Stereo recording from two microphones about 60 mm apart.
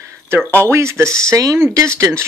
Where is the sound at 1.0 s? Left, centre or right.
Centre.